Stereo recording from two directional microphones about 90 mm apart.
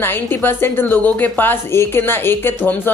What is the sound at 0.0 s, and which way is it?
Speech, 25° left (ahead or behind).